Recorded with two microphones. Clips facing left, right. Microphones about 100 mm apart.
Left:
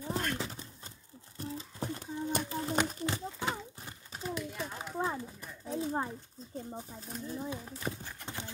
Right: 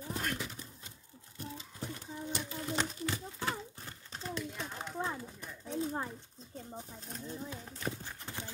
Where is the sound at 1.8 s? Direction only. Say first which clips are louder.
Left 5 dB; 50° left (ahead or behind).